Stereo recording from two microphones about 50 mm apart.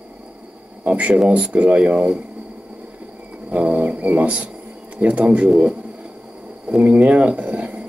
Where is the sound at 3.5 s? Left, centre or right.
Right.